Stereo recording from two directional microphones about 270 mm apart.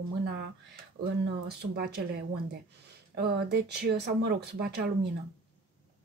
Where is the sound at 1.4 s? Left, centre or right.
Right.